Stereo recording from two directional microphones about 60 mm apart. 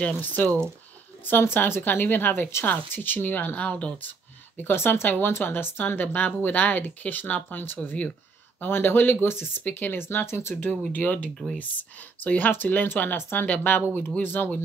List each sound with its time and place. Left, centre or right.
0.2 s speech: left
1.2 s speech: left
4.6 s speech: left
9.7 s speech: left
10.0 s speech: left
10.5 s speech: left